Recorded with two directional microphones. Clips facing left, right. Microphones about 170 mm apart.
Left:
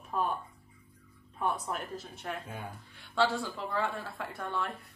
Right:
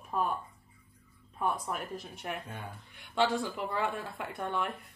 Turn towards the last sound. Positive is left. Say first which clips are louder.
# right 1 dB
turn(degrees=-15)  # may be behind; listen again after turning